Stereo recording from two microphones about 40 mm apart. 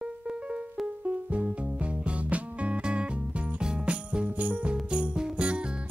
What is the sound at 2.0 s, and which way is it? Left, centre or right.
Music, right.